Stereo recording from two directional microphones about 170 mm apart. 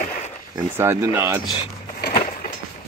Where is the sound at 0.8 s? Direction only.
15° right (ahead or behind).